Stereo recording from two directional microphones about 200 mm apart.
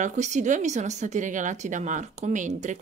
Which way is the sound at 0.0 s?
35° right (ahead or behind).